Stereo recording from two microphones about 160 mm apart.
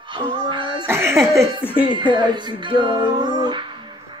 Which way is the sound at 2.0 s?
30° right (ahead or behind).